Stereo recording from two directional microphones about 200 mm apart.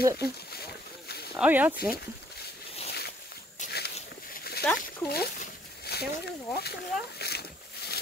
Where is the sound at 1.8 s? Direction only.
50° left (ahead or behind).